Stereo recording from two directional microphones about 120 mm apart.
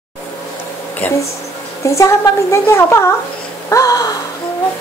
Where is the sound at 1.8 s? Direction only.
25° left (ahead or behind).